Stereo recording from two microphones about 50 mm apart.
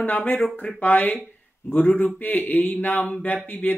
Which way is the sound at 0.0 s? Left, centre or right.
Left.